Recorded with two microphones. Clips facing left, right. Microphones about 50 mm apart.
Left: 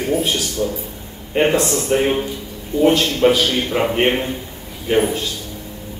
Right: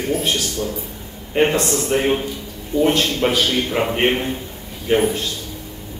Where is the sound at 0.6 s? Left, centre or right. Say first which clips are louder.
Left 3 dB; centre.